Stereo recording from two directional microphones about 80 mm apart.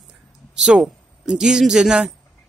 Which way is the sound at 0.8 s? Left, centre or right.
Centre.